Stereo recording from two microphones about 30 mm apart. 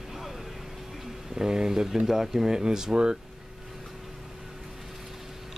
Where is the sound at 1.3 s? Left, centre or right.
Right.